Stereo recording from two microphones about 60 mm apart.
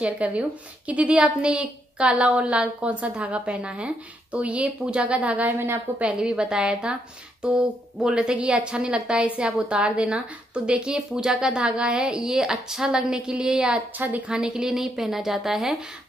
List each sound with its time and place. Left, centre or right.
0.0 s a woman's voice: right
13.9 s a woman's voice: right
14.3 s a woman's voice: centre